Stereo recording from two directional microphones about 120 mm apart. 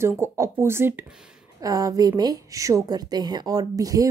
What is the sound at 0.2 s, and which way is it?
Speech, 20° right (ahead or behind).